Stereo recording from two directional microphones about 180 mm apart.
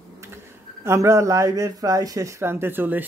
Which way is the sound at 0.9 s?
15° right (ahead or behind).